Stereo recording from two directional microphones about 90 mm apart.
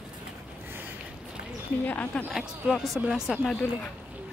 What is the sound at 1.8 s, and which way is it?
Speech, 15° left (ahead or behind).